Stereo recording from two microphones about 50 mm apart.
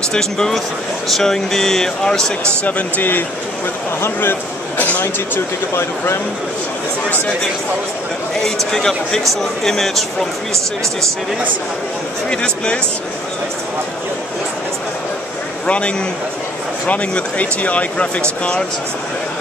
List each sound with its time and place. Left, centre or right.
0.1 s speech: centre
2.6 s speech: left
5.0 s speech: left
8.7 s speech: centre
12.3 s speech: centre
15.6 s a man's voice: left